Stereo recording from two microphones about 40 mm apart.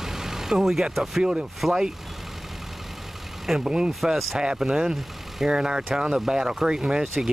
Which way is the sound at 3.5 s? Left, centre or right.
Centre.